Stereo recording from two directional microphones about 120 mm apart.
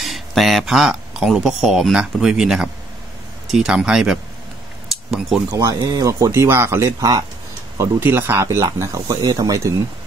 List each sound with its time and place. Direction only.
0.0 s speech: centre (ahead or behind)
4.9 s cutlery: 5° right (ahead or behind)
5.5 s speech: 30° right (ahead or behind)